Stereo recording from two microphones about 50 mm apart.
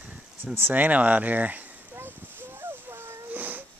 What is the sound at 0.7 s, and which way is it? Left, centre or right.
Speech, right.